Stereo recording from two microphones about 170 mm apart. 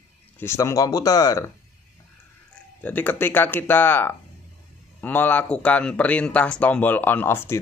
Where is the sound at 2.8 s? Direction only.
10° left (ahead or behind).